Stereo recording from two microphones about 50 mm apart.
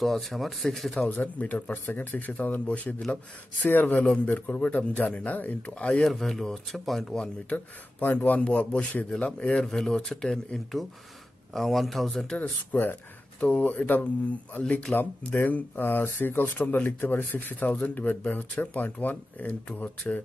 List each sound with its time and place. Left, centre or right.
0.0 s speech: centre
1.0 s speech: left
3.6 s speech: left
4.3 s speech: left
6.0 s speech: centre
7.4 s speech: left
9.6 s speech: centre
11.5 s speech: centre
12.4 s speech: left
13.4 s speech: left
13.7 s speech: left
14.9 s speech: centre
15.3 s speech: left
17.4 s speech: left